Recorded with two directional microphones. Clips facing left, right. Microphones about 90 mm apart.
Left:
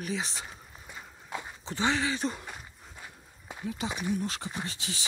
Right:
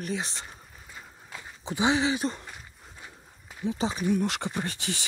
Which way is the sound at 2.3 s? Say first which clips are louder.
Even; 5° left (ahead or behind).